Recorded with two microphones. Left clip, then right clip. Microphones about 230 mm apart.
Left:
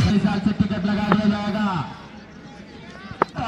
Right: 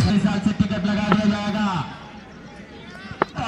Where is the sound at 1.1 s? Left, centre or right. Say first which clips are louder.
Even; right.